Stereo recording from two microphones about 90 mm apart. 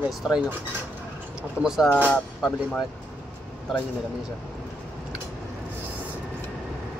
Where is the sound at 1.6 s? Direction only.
5° right (ahead or behind).